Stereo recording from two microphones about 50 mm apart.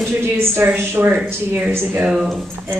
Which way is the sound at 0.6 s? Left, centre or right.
Right.